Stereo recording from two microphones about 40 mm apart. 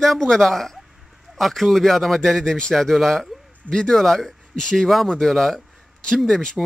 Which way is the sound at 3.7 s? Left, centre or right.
Centre.